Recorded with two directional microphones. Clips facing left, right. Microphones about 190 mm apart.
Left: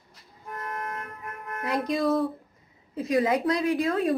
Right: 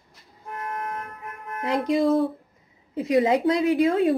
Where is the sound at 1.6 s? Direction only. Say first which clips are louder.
Right 4 dB; 25° right (ahead or behind).